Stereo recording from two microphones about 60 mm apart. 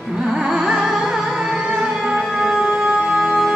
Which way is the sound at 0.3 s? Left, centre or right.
Centre.